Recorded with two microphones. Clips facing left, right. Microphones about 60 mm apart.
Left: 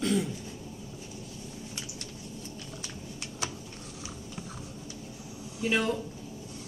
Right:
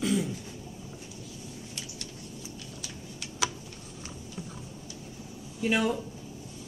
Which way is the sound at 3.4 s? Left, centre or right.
Right.